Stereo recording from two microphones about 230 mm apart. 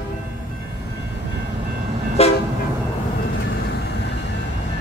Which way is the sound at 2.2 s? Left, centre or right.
Left.